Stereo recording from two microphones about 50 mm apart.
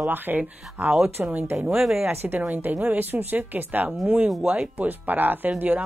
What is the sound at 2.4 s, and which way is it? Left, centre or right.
A woman's voice, right.